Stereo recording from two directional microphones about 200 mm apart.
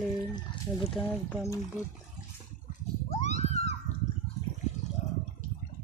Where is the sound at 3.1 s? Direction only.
35° left (ahead or behind).